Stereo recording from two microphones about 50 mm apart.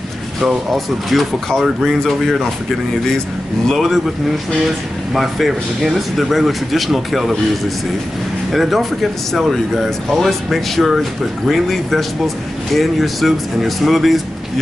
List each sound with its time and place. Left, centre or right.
0.7 s speech: centre
3.6 s speech: centre
5.1 s speech: centre
8.5 s speech: centre